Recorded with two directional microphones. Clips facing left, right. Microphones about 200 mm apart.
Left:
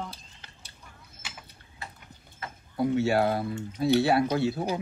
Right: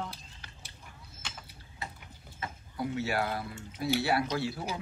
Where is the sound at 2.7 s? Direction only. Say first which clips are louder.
Left 8 dB; 25° left (ahead or behind).